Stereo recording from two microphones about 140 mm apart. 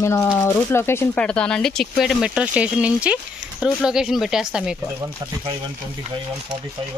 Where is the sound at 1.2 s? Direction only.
5° left (ahead or behind).